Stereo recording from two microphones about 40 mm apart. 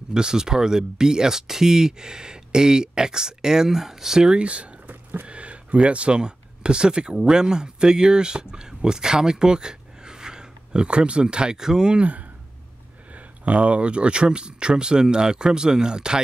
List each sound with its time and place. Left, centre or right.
0.1 s speech: centre
12.0 s speech: right; by 16.2 s centre